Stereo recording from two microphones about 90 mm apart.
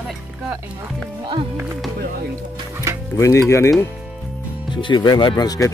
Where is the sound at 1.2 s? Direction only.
70° right (ahead or behind).